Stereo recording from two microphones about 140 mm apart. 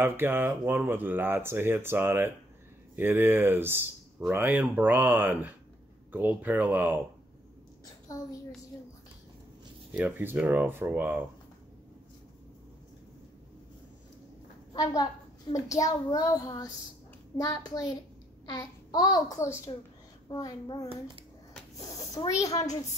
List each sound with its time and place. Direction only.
0.0 s speech: 15° right (ahead or behind)
9.9 s speech: 15° right (ahead or behind)
14.7 s a woman's voice: 25° left (ahead or behind)